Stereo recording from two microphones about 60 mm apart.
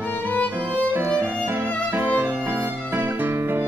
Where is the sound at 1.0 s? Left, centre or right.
Right.